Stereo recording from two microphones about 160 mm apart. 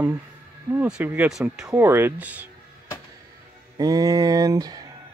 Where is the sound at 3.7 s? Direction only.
20° right (ahead or behind).